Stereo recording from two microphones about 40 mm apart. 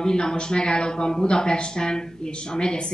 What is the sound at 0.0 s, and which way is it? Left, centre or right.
A woman's voice, centre.